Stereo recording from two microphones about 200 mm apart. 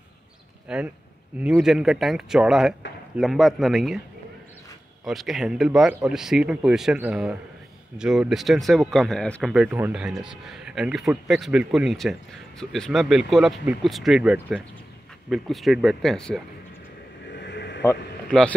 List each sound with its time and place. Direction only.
0.7 s speech: 5° right (ahead or behind)
5.0 s speech: centre (ahead or behind)
9.5 s speech: 5° right (ahead or behind)
17.3 s a sound: 60° left (ahead or behind)